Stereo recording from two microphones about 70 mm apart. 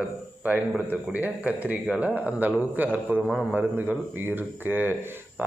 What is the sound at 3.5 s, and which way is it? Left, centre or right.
A man's voice, right.